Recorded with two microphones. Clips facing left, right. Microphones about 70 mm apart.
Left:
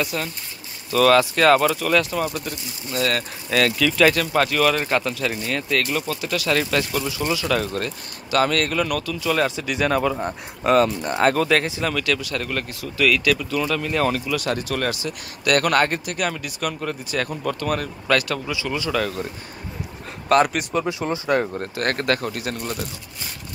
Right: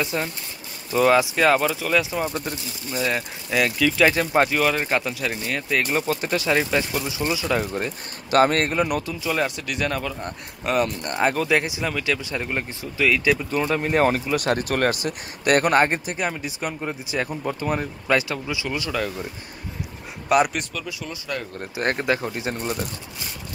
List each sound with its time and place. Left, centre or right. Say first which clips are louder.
0.0 s speech: even; right; by 4.1 s centre
4.1 s speech: right 1 dB; right
4.6 s speech: left 2 dB; centre
5.9 s a man's voice: right 2 dB; right
6.5 s speech: left 1 dB; centre
8.3 s a man's voice: right 2 dB; right
9.2 s speech: left 4 dB; centre
9.6 s speech: left 5 dB; centre
11.1 s speech: left 2 dB; centre
20.2 s speech: left 2 dB; centre
20.7 s speech: left 9 dB; left
21.7 s speech: even; centre